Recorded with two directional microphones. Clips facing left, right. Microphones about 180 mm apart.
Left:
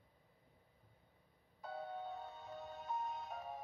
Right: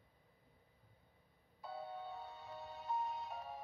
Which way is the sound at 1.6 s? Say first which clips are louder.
Left 1 dB; 50° left (ahead or behind).